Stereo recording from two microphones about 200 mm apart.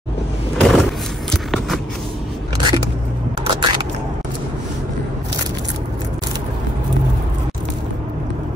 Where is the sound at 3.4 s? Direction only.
25° right (ahead or behind).